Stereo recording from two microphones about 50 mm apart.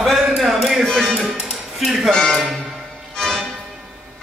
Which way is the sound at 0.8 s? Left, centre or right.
Centre.